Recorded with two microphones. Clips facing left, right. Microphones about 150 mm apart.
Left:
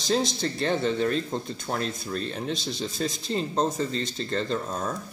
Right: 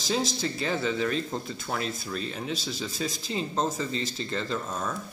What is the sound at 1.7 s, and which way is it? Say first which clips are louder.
Speech: left 2 dB; 5° left (ahead or behind).